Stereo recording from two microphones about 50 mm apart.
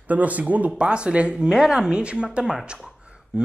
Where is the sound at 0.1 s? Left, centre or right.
Right.